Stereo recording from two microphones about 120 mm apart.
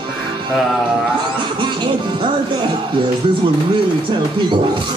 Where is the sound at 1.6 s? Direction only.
40° right (ahead or behind).